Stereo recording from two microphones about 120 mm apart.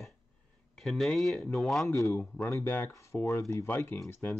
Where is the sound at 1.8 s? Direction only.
25° left (ahead or behind).